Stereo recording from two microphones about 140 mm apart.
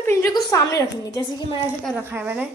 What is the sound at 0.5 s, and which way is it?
Speech, 25° left (ahead or behind).